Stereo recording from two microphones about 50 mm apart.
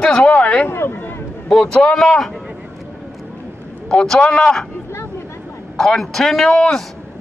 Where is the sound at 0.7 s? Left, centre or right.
Left.